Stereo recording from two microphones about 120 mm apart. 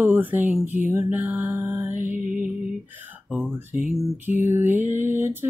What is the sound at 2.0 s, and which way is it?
Music, 90° right.